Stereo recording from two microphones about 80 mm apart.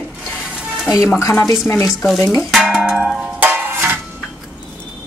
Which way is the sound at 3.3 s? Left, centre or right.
Right.